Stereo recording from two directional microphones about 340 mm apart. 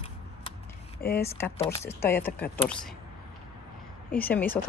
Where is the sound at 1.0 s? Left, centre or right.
Left.